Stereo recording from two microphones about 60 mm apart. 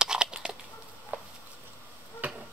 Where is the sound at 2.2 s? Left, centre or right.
Right.